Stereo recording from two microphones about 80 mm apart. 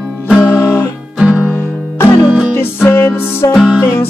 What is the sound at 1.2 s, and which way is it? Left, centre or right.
Music, centre.